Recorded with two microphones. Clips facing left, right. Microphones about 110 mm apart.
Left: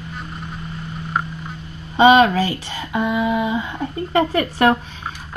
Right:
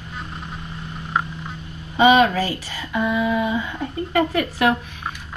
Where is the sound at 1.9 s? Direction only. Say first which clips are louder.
Left 3 dB; 30° left (ahead or behind).